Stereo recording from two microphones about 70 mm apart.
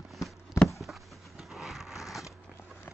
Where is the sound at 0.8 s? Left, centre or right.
Centre.